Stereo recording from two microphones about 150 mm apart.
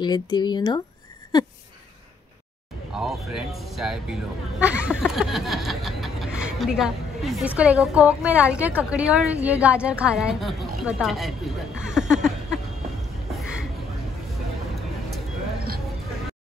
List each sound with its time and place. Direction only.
0.0 s speech: 30° left (ahead or behind)
2.9 s speech: centre (ahead or behind)
14.8 s a sound: centre (ahead or behind)